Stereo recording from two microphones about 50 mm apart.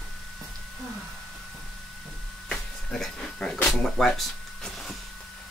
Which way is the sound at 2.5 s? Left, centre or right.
Centre.